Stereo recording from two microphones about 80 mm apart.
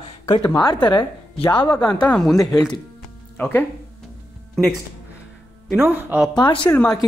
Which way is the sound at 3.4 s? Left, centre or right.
Left.